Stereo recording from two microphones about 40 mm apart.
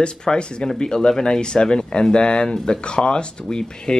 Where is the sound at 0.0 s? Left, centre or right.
Left.